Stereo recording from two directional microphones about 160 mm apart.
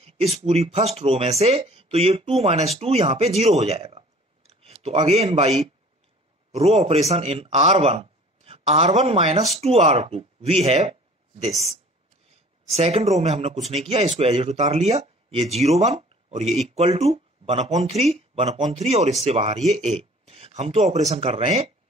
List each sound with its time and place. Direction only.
0.0 s speech: 40° right (ahead or behind)
12.7 s speech: 40° right (ahead or behind)